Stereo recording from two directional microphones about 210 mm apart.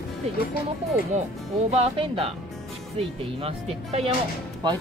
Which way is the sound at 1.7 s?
30° right (ahead or behind).